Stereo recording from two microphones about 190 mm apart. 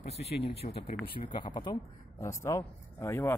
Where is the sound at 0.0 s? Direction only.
30° left (ahead or behind).